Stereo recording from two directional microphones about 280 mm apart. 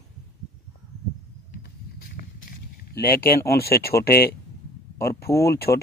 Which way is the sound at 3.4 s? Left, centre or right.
Left.